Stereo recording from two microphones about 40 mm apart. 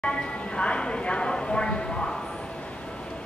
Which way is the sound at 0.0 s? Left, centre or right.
Left.